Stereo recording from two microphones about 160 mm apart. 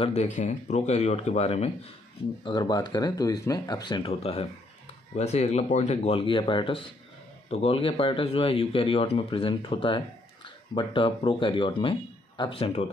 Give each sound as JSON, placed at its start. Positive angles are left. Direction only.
{"t": 0.0, "sound": "speech", "side_deg": 45}
{"t": 2.4, "sound": "speech", "side_deg": 25}